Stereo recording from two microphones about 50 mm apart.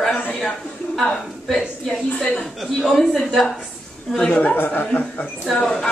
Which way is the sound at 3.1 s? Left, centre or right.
Centre.